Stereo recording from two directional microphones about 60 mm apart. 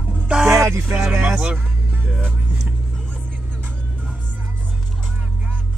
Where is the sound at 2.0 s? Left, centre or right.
Centre.